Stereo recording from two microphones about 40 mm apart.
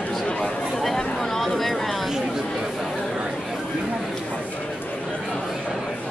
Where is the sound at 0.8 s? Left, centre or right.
Centre.